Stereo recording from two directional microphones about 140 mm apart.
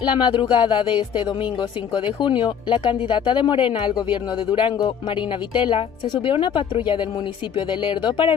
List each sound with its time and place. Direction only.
0.0 s speech: 35° left (ahead or behind)